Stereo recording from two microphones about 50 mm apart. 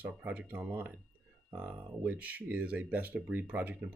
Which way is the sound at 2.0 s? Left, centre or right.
Right.